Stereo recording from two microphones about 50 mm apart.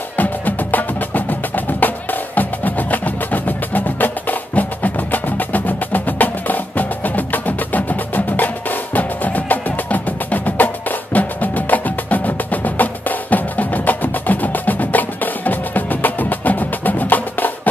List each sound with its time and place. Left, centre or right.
0.2 s wood block: left